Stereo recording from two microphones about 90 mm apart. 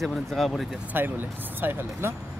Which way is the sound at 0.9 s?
25° right (ahead or behind).